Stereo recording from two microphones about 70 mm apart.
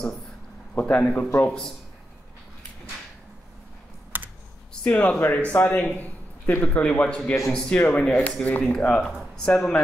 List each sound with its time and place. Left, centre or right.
0.7 s a man's voice: left
4.1 s computer keyboard: right
4.8 s a man's voice: centre